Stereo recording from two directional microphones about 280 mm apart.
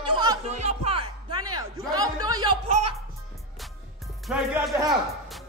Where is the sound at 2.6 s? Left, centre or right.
Right.